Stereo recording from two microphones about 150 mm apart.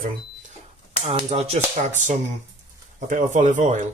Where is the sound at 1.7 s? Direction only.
55° right (ahead or behind).